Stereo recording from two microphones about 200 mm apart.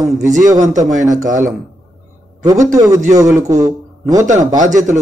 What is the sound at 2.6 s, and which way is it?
A man's voice, 15° right (ahead or behind).